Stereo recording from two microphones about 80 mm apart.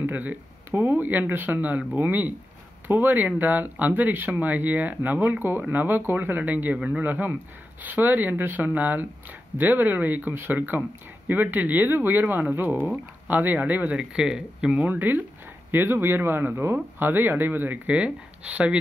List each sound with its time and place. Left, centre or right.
0.0 s speech: right
14.9 s speech: right